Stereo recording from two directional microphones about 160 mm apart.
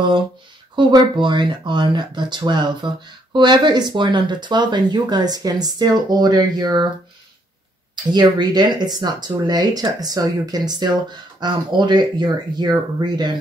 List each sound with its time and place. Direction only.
0.7 s speech: 30° right (ahead or behind)
7.9 s speech: 30° right (ahead or behind)